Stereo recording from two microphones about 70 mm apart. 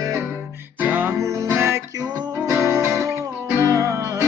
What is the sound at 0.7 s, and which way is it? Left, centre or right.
Music, right.